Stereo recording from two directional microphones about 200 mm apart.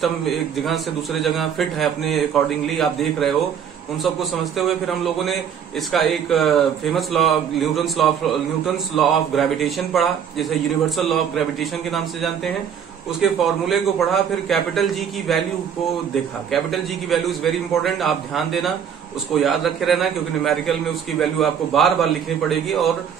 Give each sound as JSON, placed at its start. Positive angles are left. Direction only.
{"t": 0.0, "sound": "a man's voice", "side_deg": 0}
{"t": 16.4, "sound": "a man's voice", "side_deg": 0}